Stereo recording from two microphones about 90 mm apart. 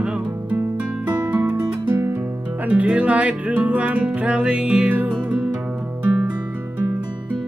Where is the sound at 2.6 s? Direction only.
15° right (ahead or behind).